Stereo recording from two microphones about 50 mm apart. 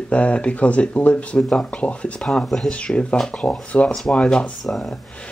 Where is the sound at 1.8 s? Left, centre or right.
Left.